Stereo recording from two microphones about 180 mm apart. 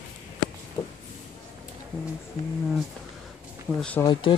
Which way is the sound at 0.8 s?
25° left (ahead or behind).